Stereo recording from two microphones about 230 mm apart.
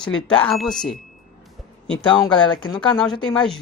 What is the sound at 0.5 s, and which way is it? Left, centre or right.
Speech, centre.